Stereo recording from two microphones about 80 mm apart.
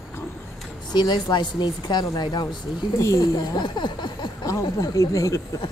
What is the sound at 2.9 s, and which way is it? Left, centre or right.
Speech, left.